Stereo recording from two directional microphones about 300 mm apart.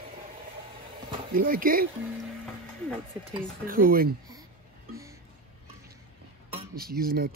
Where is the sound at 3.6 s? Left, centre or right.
Right.